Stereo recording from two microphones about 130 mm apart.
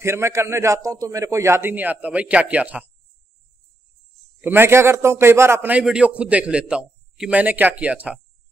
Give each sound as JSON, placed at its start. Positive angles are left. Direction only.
{"t": 0.0, "sound": "a man's voice", "side_deg": -20}
{"t": 4.4, "sound": "a man's voice", "side_deg": -15}